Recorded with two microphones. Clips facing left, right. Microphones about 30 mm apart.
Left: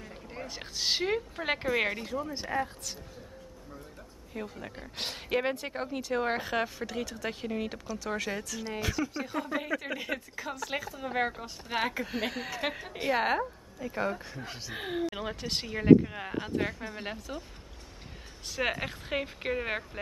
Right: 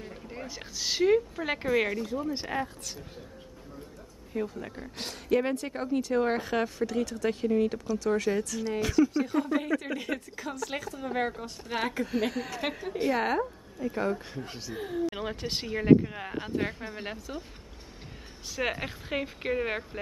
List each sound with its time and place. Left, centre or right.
0.5 s speech: centre
2.0 s speech: left
2.5 s speech: centre
4.3 s a woman's voice: centre
4.9 s speech: left
7.8 s a woman's voice: centre
12.9 s speech: centre
13.7 s speech: centre
14.7 s speech: left
15.0 s a woman's voice: centre
18.6 s a woman's voice: centre